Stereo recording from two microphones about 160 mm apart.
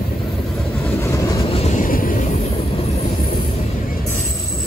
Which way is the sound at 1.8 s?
60° left (ahead or behind).